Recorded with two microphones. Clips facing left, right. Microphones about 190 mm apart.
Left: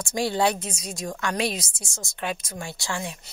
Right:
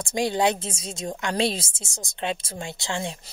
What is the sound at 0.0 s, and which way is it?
A woman's voice, 20° right (ahead or behind).